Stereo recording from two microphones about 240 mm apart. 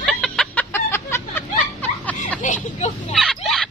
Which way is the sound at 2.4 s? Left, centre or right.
Left.